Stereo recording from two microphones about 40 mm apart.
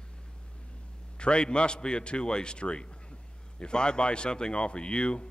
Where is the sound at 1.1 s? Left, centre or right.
Left.